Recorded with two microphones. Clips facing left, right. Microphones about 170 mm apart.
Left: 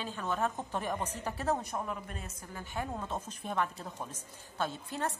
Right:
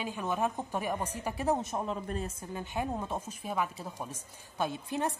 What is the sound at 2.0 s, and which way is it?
Speech, 35° right (ahead or behind).